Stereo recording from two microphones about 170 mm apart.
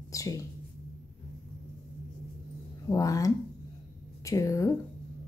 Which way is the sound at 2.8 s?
20° left (ahead or behind).